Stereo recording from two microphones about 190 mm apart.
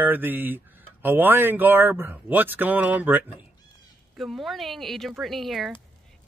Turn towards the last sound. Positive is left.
turn(degrees=0)  # may be behind; listen again after turning